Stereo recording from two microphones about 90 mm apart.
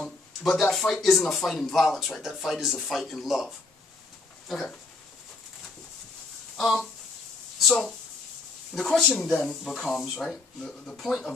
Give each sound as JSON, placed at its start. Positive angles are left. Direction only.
{"t": 0.4, "sound": "speech", "side_deg": 0}
{"t": 6.5, "sound": "speech", "side_deg": 0}
{"t": 8.7, "sound": "speech", "side_deg": 5}